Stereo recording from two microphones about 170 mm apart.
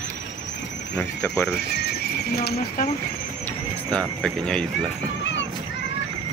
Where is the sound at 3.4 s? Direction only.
5° left (ahead or behind).